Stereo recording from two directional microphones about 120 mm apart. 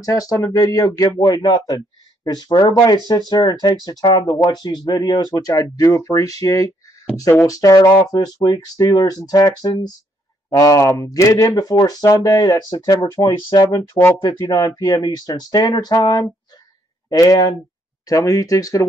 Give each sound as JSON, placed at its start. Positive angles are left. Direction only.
{"t": 0.0, "sound": "speech", "side_deg": 30}